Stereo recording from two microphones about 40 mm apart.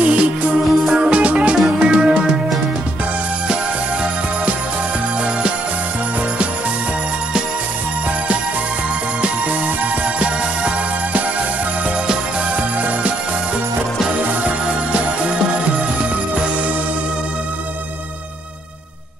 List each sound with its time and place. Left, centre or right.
0.0 s music: right
10.1 s music: right
14.9 s music: right